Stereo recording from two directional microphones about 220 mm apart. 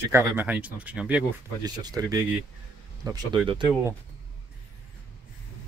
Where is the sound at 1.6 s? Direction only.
15° right (ahead or behind).